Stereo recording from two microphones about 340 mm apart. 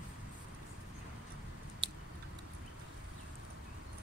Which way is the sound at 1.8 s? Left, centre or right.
Centre.